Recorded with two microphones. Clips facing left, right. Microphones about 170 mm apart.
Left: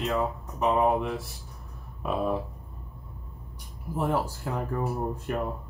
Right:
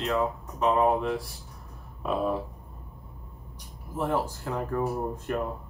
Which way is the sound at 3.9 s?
10° left (ahead or behind).